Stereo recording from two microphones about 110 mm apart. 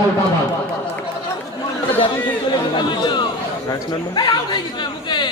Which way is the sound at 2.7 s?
45° left (ahead or behind).